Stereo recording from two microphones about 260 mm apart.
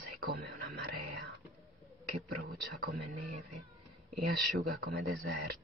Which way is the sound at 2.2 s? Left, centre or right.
Right.